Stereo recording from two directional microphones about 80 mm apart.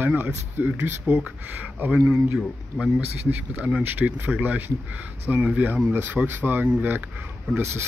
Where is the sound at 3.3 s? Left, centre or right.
Centre.